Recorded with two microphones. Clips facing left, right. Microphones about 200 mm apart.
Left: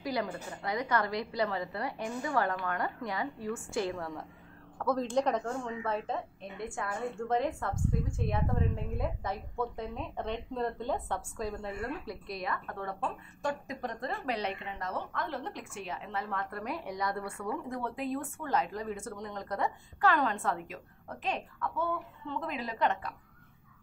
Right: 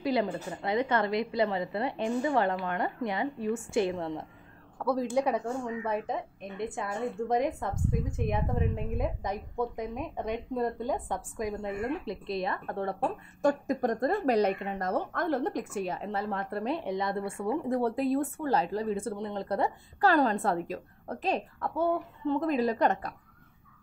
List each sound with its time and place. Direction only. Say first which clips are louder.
0.0 s a woman's voice: right 6 dB; 20° right (ahead or behind)
4.7 s a woman's voice: right 2 dB; 10° right (ahead or behind); by 13.1 s 30° right (ahead or behind)
13.4 s a woman's voice: right 9 dB; 45° right (ahead or behind)